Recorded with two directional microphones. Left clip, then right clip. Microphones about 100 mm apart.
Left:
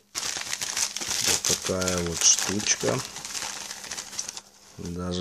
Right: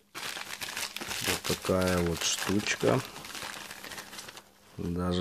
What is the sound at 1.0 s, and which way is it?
Crumpling, 5° right (ahead or behind).